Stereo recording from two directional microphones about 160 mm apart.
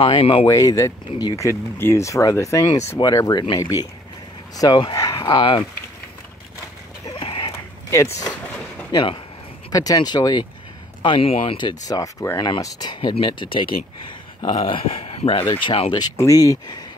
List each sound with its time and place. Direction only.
0.0 s speech: 35° left (ahead or behind)
0.5 s speech: 20° left (ahead or behind)
7.2 s a sound: 30° left (ahead or behind)
7.9 s speech: 20° left (ahead or behind)
8.9 s speech: 30° left (ahead or behind)